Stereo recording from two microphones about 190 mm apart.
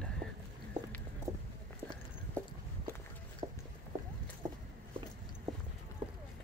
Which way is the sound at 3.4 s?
20° right (ahead or behind).